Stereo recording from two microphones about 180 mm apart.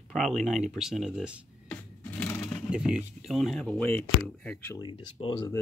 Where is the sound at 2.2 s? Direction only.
5° left (ahead or behind).